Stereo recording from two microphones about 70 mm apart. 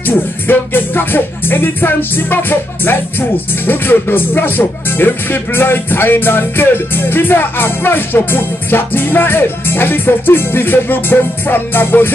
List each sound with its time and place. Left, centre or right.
0.0 s music: left